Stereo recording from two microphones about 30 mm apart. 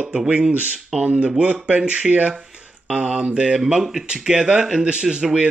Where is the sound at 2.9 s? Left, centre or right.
Right.